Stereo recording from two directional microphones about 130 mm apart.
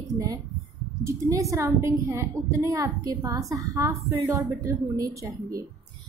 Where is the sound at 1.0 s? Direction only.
25° right (ahead or behind).